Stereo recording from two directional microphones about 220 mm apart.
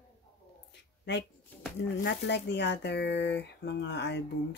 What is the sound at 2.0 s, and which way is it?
Speech, 50° left (ahead or behind).